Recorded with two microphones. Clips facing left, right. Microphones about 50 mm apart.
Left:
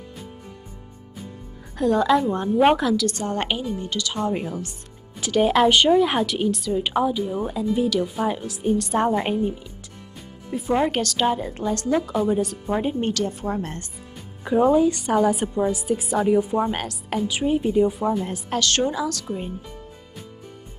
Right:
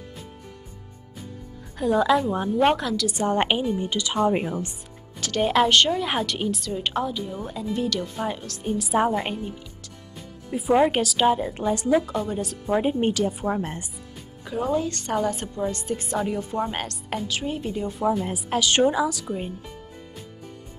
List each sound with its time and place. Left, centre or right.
1.8 s speech: centre
3.1 s speech: centre
5.2 s a woman's voice: centre
8.7 s speech: centre
10.5 s a woman's voice: centre
12.1 s speech: centre
12.8 s a woman's voice: centre
14.4 s a woman's voice: centre
17.3 s a woman's voice: centre